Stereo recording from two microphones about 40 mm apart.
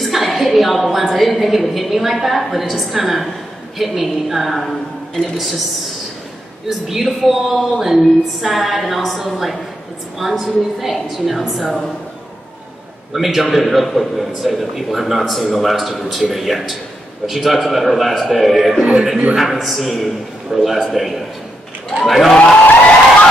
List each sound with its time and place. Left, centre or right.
0.0 s a woman's voice: centre
7.1 s a woman's voice: centre
13.1 s a woman's voice: centre
18.8 s speech: right
19.3 s a woman's voice: centre
22.3 s speech: centre